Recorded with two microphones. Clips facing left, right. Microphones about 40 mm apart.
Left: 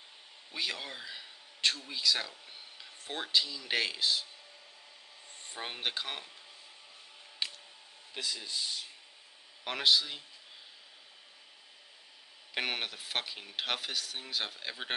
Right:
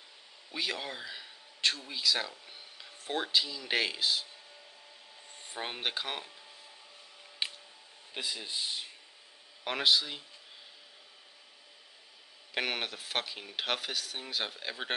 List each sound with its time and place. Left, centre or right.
0.5 s speech: centre
5.4 s speech: centre
7.4 s a sound: right
8.1 s speech: centre
9.7 s speech: centre
12.5 s speech: centre